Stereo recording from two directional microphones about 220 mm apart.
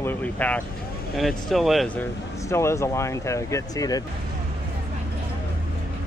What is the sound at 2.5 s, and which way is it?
Speech, 10° left (ahead or behind).